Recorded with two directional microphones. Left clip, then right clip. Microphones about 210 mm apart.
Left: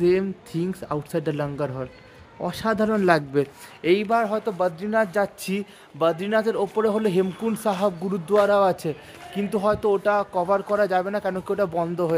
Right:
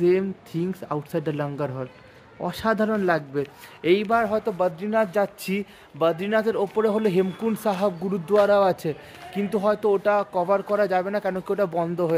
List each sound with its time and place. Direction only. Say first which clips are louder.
0.0 s a man's voice: even; 5° left (ahead or behind)
3.0 s speech: left 3 dB; 50° left (ahead or behind)
3.8 s a man's voice: even; centre (ahead or behind)